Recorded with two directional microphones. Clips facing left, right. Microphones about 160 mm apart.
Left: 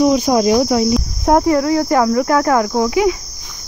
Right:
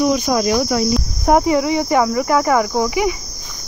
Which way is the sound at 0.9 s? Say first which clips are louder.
Left 1 dB; 5° right (ahead or behind).